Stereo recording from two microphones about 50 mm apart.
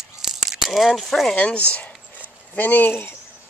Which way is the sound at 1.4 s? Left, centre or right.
Left.